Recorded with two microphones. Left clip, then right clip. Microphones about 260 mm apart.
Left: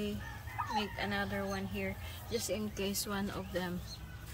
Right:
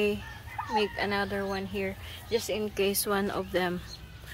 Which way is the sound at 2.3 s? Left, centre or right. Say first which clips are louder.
Right 8 dB; centre.